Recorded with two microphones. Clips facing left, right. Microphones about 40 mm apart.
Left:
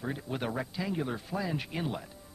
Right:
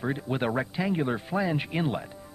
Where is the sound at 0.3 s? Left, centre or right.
Right.